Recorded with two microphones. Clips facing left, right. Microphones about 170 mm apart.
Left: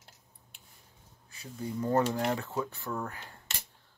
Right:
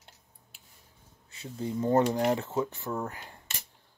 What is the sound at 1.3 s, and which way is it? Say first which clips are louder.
Speech: right 3 dB; 25° right (ahead or behind).